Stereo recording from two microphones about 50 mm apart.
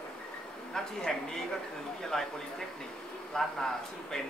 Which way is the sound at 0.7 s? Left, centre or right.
Centre.